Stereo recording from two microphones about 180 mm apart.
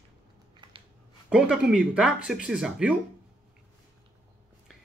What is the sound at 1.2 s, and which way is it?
Speech, 5° right (ahead or behind).